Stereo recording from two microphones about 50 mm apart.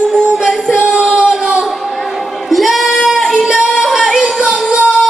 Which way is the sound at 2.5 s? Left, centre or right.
Centre.